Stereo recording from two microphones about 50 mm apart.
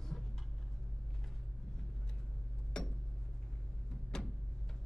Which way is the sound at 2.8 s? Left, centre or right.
Centre.